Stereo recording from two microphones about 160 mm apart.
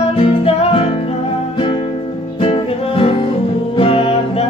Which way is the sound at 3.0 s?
30° left (ahead or behind).